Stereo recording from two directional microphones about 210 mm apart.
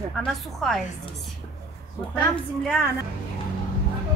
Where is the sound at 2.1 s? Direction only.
Centre (ahead or behind).